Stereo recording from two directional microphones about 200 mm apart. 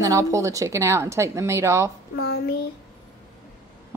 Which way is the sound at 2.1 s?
50° left (ahead or behind).